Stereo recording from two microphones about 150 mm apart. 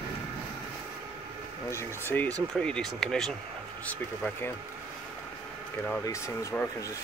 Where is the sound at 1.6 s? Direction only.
15° left (ahead or behind).